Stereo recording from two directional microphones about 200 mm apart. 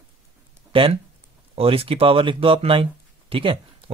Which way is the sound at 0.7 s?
25° right (ahead or behind).